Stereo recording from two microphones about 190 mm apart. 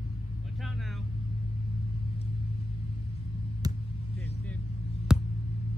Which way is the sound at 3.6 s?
20° right (ahead or behind).